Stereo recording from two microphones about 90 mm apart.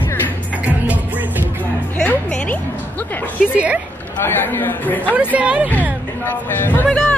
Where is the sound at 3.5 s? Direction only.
15° right (ahead or behind).